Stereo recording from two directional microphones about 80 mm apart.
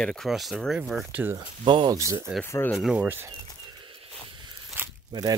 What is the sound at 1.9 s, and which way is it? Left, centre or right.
Speech, right.